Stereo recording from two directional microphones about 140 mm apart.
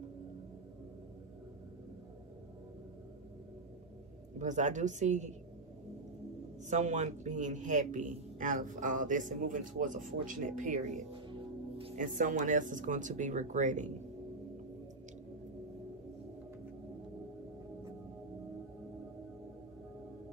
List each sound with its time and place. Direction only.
4.4 s speech: 60° right (ahead or behind)
6.7 s speech: 60° right (ahead or behind)